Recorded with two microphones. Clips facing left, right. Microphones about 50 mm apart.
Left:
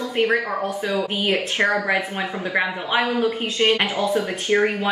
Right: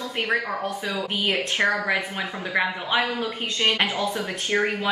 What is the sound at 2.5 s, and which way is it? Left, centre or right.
Speech, centre.